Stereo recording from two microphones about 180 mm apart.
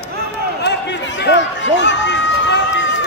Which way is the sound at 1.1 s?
80° left.